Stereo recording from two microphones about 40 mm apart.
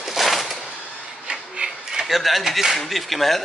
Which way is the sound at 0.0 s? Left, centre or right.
Centre.